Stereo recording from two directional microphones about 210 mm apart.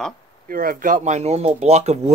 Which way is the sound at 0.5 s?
45° right (ahead or behind).